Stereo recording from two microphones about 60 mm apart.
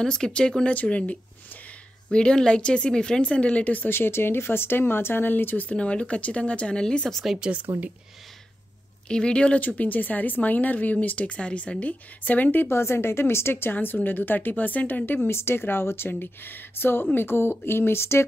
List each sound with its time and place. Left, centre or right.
0.0 s speech: centre
3.9 s speech: left
5.7 s speech: centre
7.3 s speech: centre
9.1 s speech: centre
9.6 s speech: left
12.7 s a woman's voice: left
15.2 s speech: left